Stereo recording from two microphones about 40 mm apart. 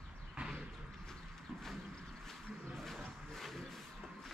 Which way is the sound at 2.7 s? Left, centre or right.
Centre.